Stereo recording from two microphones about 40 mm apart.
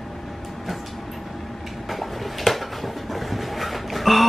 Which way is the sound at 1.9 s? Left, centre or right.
Centre.